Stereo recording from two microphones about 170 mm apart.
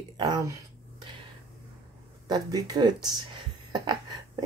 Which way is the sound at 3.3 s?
25° right (ahead or behind).